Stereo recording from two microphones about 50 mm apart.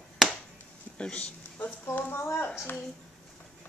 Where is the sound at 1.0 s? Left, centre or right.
Left.